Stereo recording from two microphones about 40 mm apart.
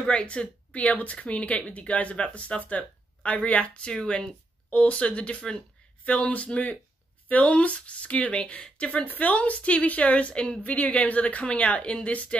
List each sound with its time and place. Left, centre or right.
0.1 s speech: left
3.9 s speech: centre
4.6 s a woman's voice: left
9.0 s speech: left
10.6 s speech: left